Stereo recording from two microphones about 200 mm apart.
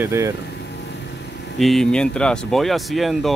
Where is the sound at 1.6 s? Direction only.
Centre (ahead or behind).